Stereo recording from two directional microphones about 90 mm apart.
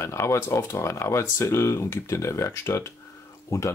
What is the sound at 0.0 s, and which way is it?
Speech, 30° left (ahead or behind).